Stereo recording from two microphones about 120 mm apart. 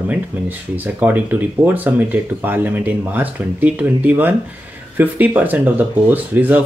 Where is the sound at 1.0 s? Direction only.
15° right (ahead or behind).